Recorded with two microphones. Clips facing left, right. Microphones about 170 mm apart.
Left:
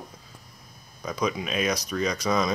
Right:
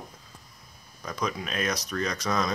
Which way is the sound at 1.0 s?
10° left (ahead or behind).